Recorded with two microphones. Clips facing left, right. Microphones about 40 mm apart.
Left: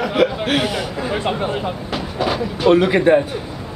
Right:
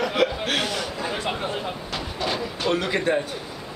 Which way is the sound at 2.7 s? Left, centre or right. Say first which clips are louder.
Left 10 dB; left.